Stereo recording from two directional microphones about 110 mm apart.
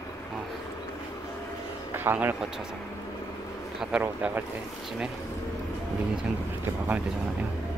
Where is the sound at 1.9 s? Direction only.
20° right (ahead or behind).